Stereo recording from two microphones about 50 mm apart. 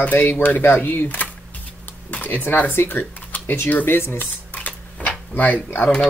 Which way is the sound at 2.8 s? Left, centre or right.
Left.